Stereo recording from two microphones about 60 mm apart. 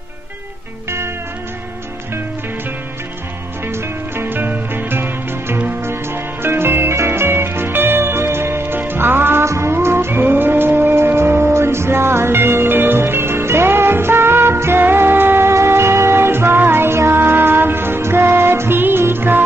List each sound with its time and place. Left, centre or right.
0.8 s music: right
3.6 s music: right